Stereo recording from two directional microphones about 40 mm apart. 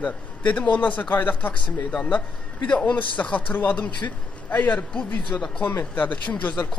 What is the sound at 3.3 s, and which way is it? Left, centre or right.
Speech, left.